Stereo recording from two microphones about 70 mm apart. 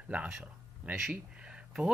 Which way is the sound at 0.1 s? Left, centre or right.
Centre.